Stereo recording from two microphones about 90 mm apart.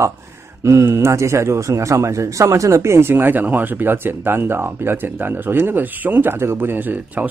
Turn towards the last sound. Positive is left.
turn(degrees=-20)  # may be behind; listen again after turning